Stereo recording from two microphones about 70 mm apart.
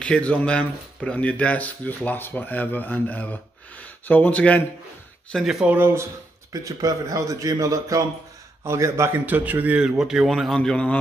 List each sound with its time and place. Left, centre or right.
0.0 s speech: centre
5.3 s speech: centre
6.5 s speech: right
8.6 s a man's voice: right
9.1 s a man's voice: right; by 10.6 s centre
10.6 s speech: centre